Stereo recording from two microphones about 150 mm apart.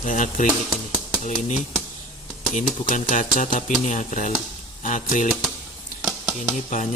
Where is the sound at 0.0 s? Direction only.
55° left (ahead or behind).